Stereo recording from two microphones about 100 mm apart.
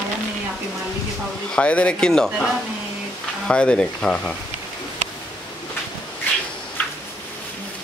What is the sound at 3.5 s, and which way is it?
Speech, 10° left (ahead or behind).